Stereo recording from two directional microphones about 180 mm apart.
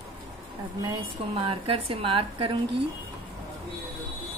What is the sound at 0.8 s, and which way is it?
A woman's voice, 25° right (ahead or behind).